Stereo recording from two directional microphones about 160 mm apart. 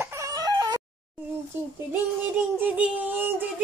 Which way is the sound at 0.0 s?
20° right (ahead or behind).